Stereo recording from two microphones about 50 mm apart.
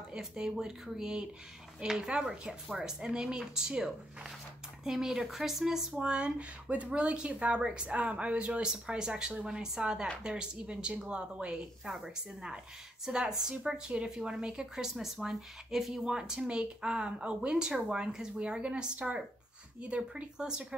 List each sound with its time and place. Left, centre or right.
0.1 s speech: centre
5.9 s speech: right